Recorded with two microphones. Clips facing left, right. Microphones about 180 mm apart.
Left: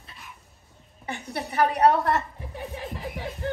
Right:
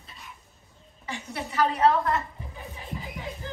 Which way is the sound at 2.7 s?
70° left (ahead or behind).